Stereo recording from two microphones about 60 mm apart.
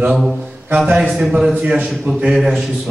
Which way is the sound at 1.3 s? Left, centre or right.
Centre.